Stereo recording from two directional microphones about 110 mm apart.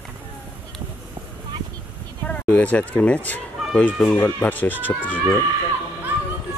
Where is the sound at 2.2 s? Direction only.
15° left (ahead or behind).